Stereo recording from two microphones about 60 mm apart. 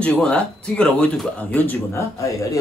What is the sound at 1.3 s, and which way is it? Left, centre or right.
Speech, left.